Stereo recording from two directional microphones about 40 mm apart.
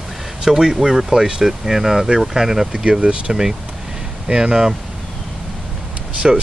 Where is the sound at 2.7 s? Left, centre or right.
Right.